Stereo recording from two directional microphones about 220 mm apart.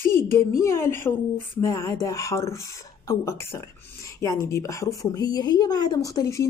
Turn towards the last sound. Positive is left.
turn(degrees=15)  # may be behind; listen again after turning